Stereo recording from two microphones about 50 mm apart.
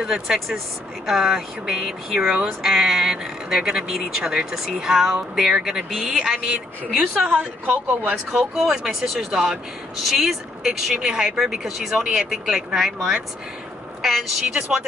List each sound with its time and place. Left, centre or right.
0.0 s speech: centre
7.2 s a woman's voice: right
8.3 s speech: centre
14.5 s speech: centre